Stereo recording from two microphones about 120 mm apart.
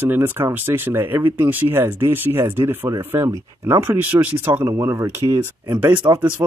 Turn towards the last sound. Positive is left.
turn(degrees=-25)  # may be behind; listen again after turning